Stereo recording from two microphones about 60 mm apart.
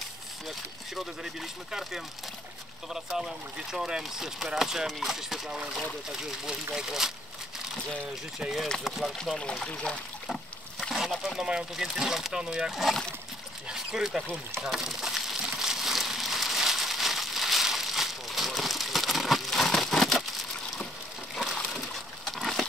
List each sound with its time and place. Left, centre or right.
0.5 s speech: centre
8.8 s speech: centre
9.2 s speech: centre
10.3 s boat: centre
11.7 s speech: centre
13.7 s a sound: centre
21.6 s a sound: centre